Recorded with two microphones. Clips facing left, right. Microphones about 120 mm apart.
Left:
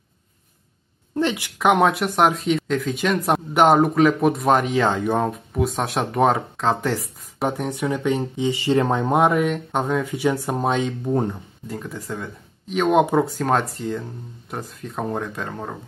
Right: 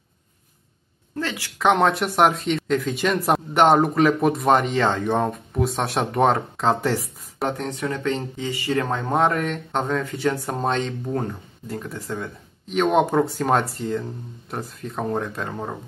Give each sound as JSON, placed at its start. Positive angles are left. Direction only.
{"t": 1.1, "sound": "speech", "side_deg": 20}
{"t": 1.6, "sound": "speech", "side_deg": 5}
{"t": 7.4, "sound": "speech", "side_deg": 10}
{"t": 11.6, "sound": "speech", "side_deg": 0}